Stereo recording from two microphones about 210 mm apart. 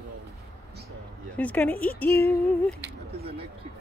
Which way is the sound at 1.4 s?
10° left (ahead or behind).